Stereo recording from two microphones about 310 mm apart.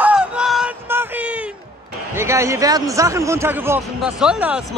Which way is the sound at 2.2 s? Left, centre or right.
Centre.